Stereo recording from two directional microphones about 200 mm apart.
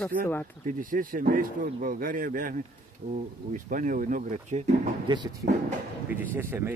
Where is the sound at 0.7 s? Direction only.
45° right (ahead or behind).